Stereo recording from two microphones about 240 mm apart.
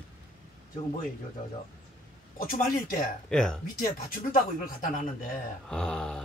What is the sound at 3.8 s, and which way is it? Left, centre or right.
Speech, left.